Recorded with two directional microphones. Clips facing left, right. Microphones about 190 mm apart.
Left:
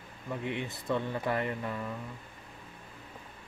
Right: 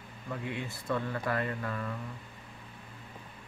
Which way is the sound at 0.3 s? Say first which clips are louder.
Left 2 dB; 20° left (ahead or behind).